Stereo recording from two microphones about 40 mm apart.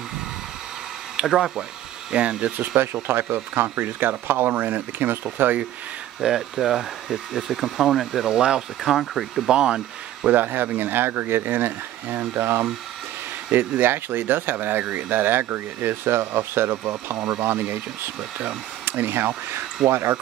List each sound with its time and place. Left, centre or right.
1.1 s speech: centre
2.4 s speech: right
2.8 s speech: right
4.1 s speech: right
6.2 s speech: centre
8.3 s speech: right
9.1 s speech: centre
9.5 s speech: right
10.3 s speech: right
19.9 s speech: right